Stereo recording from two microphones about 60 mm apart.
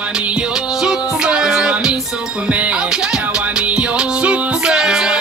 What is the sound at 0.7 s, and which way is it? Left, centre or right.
Music, centre.